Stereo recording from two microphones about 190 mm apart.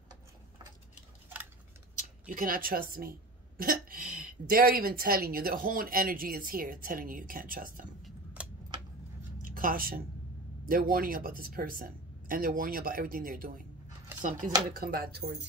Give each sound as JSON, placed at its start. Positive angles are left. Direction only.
{"t": 2.0, "sound": "a woman's voice", "side_deg": -45}
{"t": 8.0, "sound": "a sound", "side_deg": -5}
{"t": 9.4, "sound": "a woman's voice", "side_deg": -45}